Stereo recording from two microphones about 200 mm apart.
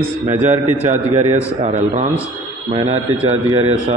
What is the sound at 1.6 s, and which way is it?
Speech, 35° right (ahead or behind).